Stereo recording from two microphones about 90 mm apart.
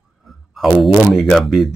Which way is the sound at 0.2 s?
Centre (ahead or behind).